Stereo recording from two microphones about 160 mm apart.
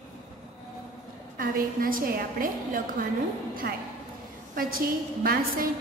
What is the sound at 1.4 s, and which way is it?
A woman's voice, 60° right (ahead or behind).